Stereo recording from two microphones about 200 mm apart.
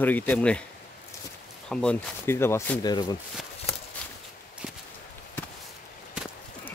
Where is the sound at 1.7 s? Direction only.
5° left (ahead or behind); by 3.2 s 20° left (ahead or behind).